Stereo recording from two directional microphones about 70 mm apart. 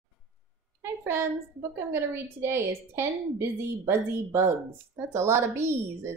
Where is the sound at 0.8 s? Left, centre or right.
Right.